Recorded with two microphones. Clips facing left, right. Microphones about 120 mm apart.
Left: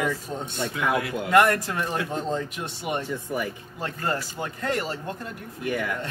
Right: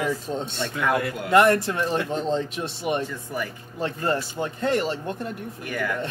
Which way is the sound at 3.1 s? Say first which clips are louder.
Left 2 dB; 20° left (ahead or behind).